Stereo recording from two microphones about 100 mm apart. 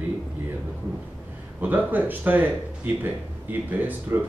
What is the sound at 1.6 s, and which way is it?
Speech, 15° right (ahead or behind).